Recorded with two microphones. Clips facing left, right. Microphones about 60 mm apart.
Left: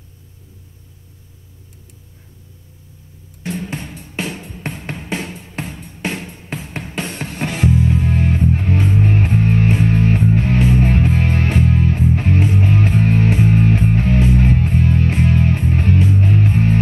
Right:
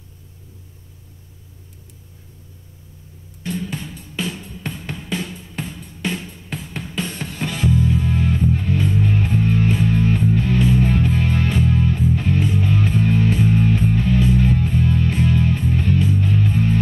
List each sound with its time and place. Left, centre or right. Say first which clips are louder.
3.4 s music: left 1 dB; left